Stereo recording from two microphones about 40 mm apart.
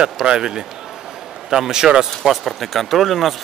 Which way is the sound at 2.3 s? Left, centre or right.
Centre.